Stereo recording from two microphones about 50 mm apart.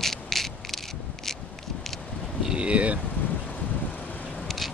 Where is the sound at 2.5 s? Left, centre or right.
Right.